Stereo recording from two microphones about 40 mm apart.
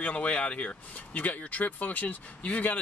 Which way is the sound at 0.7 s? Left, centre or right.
Left.